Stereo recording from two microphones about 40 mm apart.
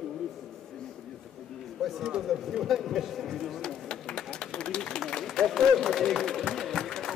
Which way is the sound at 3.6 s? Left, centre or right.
Left.